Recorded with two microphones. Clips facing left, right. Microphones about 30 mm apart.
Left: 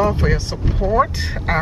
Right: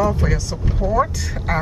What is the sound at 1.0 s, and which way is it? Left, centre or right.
Speech, centre.